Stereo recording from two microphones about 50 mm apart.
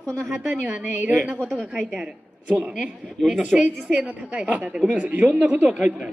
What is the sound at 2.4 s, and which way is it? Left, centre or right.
A woman's voice, right.